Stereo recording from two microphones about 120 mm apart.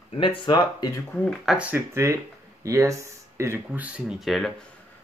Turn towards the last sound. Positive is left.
turn(degrees=0)  # may be behind; listen again after turning